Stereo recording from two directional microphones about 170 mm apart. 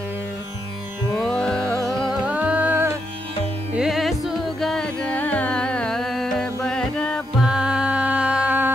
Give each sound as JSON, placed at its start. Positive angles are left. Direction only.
{"t": 1.1, "sound": "music", "side_deg": 5}
{"t": 7.4, "sound": "music", "side_deg": -5}